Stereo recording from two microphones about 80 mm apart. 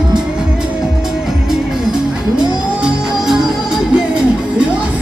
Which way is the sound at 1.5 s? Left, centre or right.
Centre.